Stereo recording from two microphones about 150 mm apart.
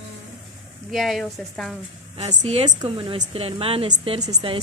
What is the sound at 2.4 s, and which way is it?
Speech, 40° right (ahead or behind).